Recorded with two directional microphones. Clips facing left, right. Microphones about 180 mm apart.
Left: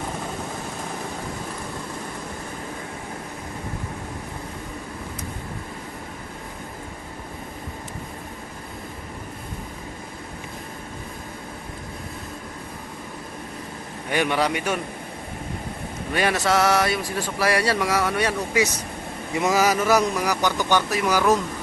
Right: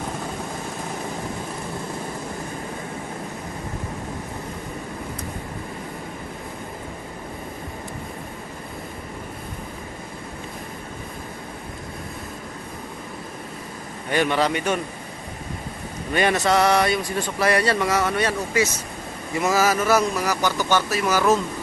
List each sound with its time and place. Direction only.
14.1 s speech: 10° left (ahead or behind)
16.1 s speech: 5° left (ahead or behind)